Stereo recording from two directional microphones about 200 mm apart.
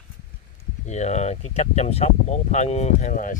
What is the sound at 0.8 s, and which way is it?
Speech, 35° left (ahead or behind).